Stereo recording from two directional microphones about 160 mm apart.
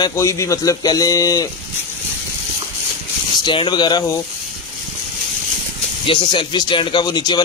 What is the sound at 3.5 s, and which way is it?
Speech, 30° left (ahead or behind).